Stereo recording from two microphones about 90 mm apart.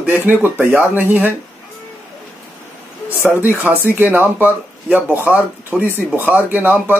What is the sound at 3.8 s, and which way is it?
Speech, 20° right (ahead or behind).